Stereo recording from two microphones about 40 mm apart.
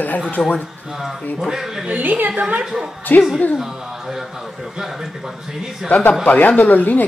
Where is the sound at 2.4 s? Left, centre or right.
Right.